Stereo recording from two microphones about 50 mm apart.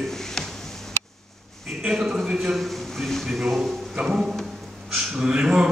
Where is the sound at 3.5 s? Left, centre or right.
Centre.